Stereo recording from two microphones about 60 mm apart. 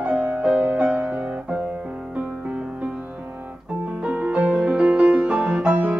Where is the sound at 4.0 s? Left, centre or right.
Centre.